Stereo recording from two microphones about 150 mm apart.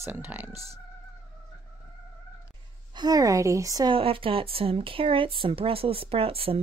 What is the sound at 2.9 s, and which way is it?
Speech, 30° right (ahead or behind).